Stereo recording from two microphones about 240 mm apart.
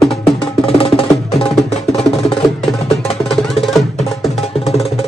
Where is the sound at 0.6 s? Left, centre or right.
Left.